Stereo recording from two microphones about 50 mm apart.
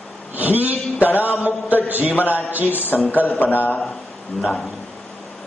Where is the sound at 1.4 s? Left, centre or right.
Right.